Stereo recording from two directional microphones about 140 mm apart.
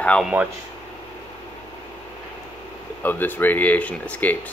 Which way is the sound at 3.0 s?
15° left (ahead or behind).